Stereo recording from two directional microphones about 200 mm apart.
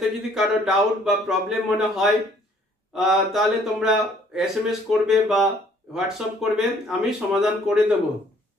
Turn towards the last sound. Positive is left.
turn(degrees=0)  # may be behind; listen again after turning